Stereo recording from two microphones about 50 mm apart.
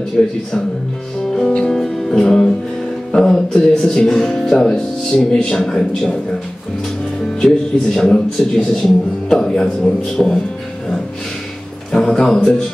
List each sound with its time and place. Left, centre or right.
0.2 s a man's voice: centre
1.3 s music: centre
4.7 s a man's voice: centre
7.4 s a man's voice: centre
11.9 s speech: centre